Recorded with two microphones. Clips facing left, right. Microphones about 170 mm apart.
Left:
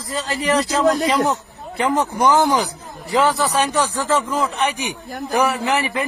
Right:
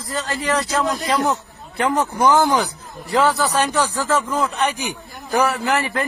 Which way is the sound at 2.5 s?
Centre (ahead or behind).